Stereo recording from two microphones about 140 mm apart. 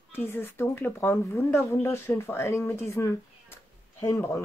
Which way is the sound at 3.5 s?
20° left (ahead or behind).